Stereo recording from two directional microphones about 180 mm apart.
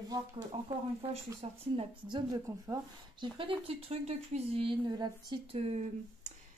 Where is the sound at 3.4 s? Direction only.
30° right (ahead or behind).